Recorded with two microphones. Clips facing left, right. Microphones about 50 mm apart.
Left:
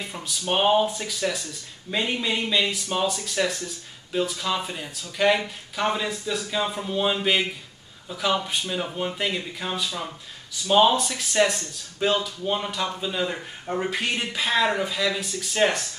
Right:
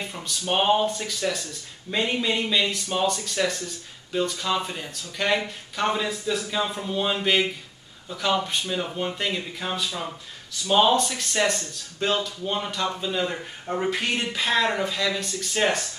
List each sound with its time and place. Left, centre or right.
0.0 s speech: centre